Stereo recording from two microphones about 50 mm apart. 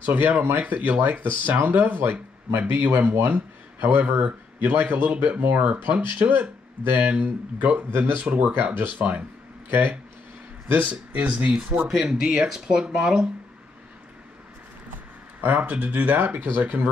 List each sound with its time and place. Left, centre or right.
0.0 s speech: right
3.3 s speech: right
6.1 s speech: right
8.7 s speech: right
10.7 s speech: right
15.4 s speech: right
16.2 s speech: right